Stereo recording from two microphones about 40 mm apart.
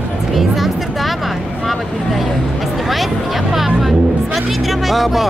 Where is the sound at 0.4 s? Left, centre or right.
Centre.